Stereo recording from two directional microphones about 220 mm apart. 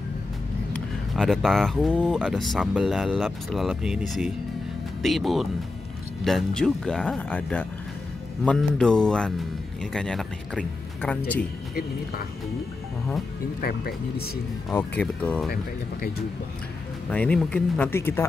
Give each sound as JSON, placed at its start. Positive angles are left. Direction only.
{"t": 0.7, "sound": "speech", "side_deg": 0}
{"t": 5.0, "sound": "speech", "side_deg": 0}
{"t": 13.6, "sound": "speech", "side_deg": 45}
{"t": 14.7, "sound": "speech", "side_deg": 10}
{"t": 15.5, "sound": "speech", "side_deg": 40}
{"t": 17.1, "sound": "speech", "side_deg": 5}